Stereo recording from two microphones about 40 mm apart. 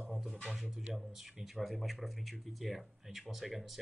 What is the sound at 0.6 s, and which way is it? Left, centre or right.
Speech, centre.